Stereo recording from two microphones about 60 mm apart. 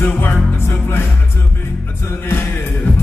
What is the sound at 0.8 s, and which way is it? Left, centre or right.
Music, left.